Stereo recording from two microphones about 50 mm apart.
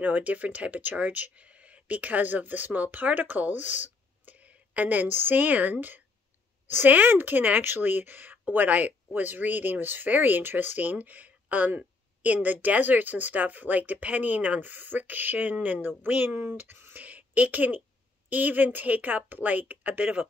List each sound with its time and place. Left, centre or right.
0.0 s speech: right
16.3 s speech: right
17.0 s speech: right